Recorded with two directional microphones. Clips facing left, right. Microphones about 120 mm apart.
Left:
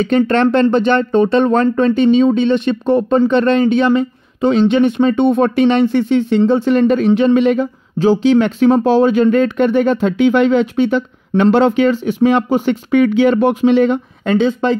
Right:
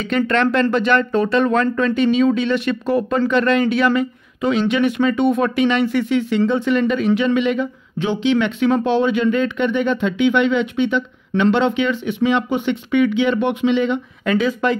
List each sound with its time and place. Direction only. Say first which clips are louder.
0.0 s speech: left 5 dB; 35° left (ahead or behind)